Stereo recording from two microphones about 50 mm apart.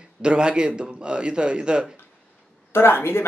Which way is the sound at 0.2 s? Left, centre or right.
Centre.